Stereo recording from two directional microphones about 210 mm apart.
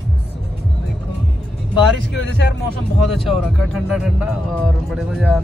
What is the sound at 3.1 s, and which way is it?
Speech, centre (ahead or behind).